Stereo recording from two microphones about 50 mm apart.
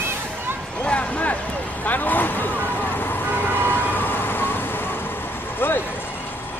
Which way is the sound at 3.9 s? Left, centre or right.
Left.